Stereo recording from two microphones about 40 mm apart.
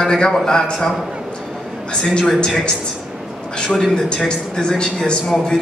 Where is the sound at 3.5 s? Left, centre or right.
Centre.